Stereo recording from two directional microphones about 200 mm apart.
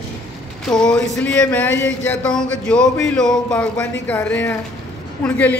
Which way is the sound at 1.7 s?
65° left (ahead or behind).